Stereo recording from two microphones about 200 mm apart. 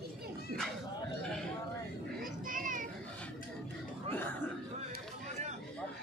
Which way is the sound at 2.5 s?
40° right (ahead or behind).